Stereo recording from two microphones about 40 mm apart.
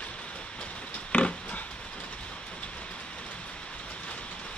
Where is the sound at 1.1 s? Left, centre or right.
Left.